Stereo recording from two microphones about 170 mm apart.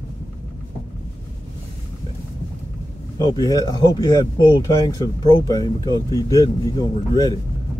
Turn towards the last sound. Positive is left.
turn(degrees=20)  # may be behind; listen again after turning